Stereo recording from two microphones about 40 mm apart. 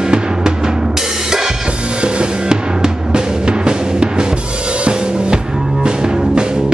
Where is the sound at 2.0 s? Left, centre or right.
Right.